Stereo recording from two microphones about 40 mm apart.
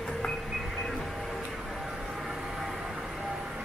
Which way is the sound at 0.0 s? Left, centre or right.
Centre.